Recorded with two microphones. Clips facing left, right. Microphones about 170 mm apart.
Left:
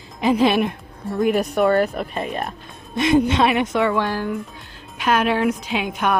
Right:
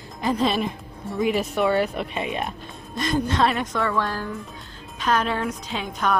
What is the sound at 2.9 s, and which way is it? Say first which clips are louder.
Speech: left 8 dB; 70° left (ahead or behind).